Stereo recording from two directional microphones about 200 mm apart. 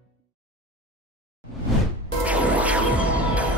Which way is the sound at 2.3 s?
5° right (ahead or behind).